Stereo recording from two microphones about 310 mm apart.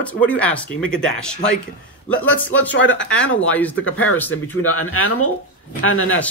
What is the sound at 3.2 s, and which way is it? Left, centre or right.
Speech, centre.